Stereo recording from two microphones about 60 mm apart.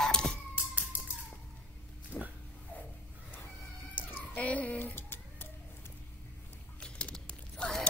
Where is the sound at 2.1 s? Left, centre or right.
Left.